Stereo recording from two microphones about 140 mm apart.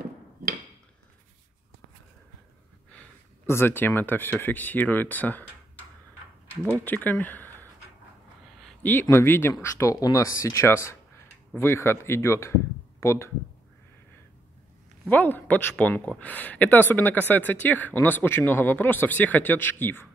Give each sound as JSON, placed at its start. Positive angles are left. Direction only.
{"t": 2.9, "sound": "speech", "side_deg": 15}
{"t": 6.4, "sound": "speech", "side_deg": 15}
{"t": 9.0, "sound": "speech", "side_deg": 15}
{"t": 15.0, "sound": "speech", "side_deg": 15}